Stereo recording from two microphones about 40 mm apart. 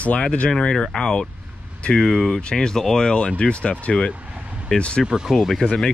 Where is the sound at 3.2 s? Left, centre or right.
Left.